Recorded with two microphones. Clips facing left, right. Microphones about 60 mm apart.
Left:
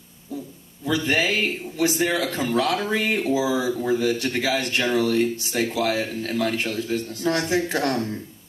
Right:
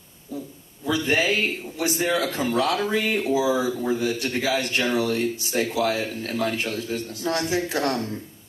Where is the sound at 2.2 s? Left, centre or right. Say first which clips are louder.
Even; right.